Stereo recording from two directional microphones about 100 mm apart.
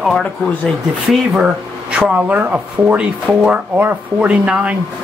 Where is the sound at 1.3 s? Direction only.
10° right (ahead or behind).